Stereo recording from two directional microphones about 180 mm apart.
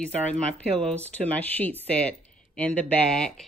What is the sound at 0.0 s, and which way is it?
Speech, 5° left (ahead or behind).